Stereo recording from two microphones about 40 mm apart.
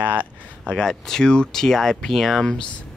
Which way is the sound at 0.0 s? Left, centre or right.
Right.